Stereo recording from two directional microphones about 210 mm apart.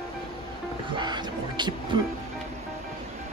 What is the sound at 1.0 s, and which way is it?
Music, 20° right (ahead or behind).